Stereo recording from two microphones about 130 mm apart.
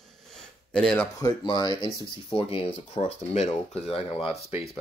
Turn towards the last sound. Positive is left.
turn(degrees=50)  # may be behind; listen again after turning